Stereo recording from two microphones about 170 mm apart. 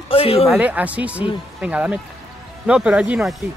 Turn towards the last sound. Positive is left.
turn(degrees=-5)  # may be behind; listen again after turning